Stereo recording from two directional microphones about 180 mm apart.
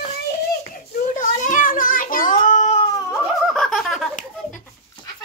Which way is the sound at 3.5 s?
5° left (ahead or behind).